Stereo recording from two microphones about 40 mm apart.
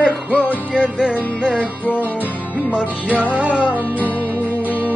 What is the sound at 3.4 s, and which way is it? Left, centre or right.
Music, right.